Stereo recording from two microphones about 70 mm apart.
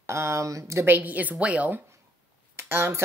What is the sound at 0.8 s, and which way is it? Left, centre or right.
Speech, right.